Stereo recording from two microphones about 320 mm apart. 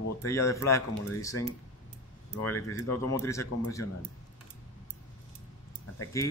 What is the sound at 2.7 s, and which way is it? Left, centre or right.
Speech, centre.